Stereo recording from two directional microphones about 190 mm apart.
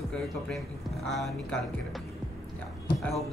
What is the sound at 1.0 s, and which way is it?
Speech, centre (ahead or behind).